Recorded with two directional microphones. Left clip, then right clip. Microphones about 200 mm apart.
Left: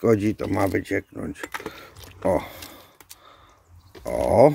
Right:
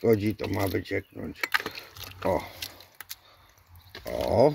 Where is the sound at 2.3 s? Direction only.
15° left (ahead or behind).